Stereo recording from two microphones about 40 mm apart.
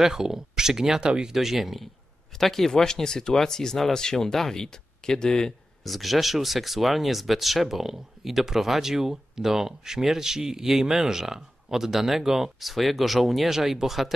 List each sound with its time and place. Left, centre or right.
0.0 s speech: centre
1.3 s speech: centre
2.3 s speech: centre
5.9 s speech: centre